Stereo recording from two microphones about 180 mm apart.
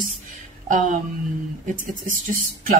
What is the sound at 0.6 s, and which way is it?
Speech, 45° right (ahead or behind).